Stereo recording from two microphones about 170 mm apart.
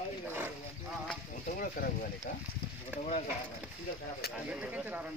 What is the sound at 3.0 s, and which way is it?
Speech, 40° left (ahead or behind).